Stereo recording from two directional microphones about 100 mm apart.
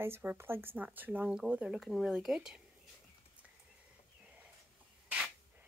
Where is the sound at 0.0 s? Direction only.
20° right (ahead or behind).